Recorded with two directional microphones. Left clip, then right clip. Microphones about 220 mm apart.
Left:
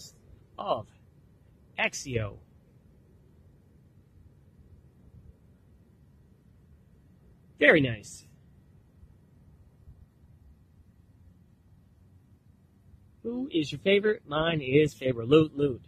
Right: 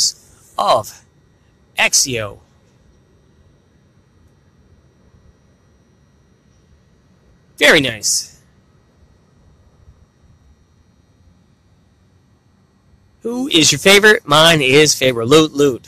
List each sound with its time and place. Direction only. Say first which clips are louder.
0.6 s speech: right 17 dB; 30° right (ahead or behind)
1.8 s speech: right 15 dB; 10° right (ahead or behind)
7.5 s speech: right 10 dB; 15° right (ahead or behind)
13.2 s speech: right 17 dB; 30° right (ahead or behind)